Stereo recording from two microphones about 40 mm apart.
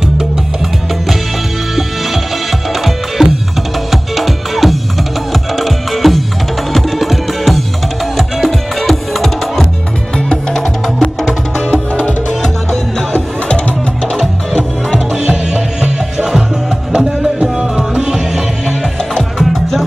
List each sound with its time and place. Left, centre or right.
2.7 s music: centre
10.1 s music: centre
15.2 s music: centre
19.3 s music: centre